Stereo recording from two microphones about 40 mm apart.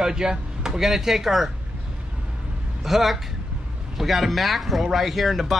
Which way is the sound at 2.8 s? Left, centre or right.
Centre.